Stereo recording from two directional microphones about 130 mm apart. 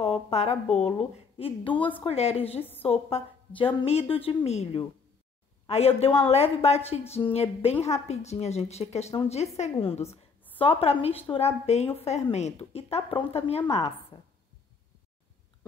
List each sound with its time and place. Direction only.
0.0 s a woman's voice: 50° left (ahead or behind)
1.4 s a woman's voice: 40° left (ahead or behind)